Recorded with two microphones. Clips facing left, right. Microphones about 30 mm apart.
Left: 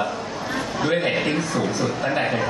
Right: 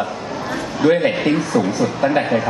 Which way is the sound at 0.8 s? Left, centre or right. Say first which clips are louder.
Right 7 dB; centre.